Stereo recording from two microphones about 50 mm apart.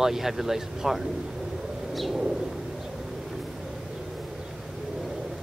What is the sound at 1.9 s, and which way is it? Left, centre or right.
Bird, centre.